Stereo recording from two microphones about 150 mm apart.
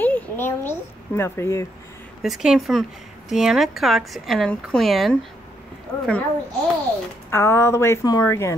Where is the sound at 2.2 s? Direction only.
Centre (ahead or behind).